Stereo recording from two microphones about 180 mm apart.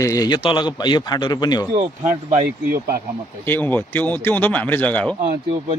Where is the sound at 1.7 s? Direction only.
35° right (ahead or behind).